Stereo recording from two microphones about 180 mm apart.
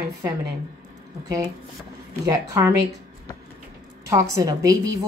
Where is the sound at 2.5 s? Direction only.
15° right (ahead or behind).